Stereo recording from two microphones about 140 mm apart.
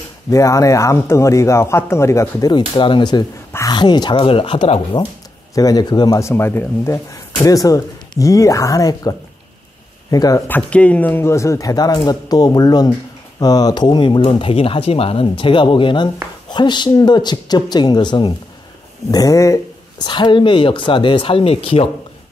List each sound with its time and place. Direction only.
0.3 s a man's voice: 20° left (ahead or behind)
2.5 s speech: 35° left (ahead or behind)
5.5 s a man's voice: 25° left (ahead or behind)
10.1 s a man's voice: 25° left (ahead or behind)
10.5 s a man's voice: 10° left (ahead or behind); by 21.6 s 40° left (ahead or behind)